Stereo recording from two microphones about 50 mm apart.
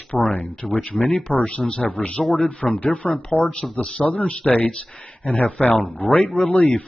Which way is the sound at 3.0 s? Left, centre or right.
Centre.